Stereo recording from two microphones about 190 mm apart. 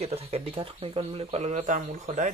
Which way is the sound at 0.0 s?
30° right (ahead or behind).